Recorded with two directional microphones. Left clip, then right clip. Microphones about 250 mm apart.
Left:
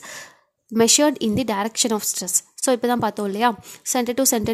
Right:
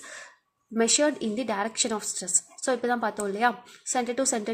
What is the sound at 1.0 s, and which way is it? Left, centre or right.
A woman's voice, left.